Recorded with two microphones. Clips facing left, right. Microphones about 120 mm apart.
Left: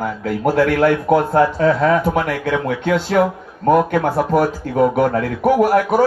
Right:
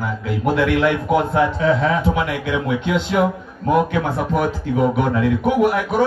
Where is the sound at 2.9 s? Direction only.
20° right (ahead or behind).